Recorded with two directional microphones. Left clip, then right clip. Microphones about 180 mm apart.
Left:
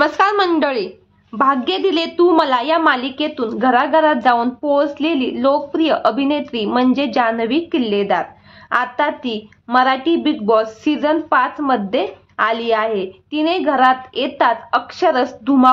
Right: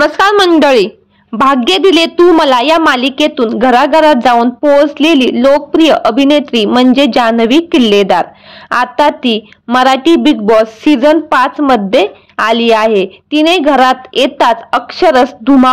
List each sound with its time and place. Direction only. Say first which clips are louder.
0.0 s a woman's voice: right 7 dB; 35° right (ahead or behind)